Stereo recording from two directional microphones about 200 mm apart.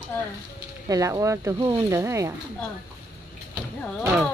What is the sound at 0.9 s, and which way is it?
Speech, 15° right (ahead or behind).